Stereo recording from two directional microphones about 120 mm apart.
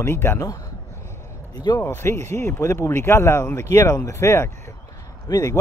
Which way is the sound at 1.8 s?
20° left (ahead or behind).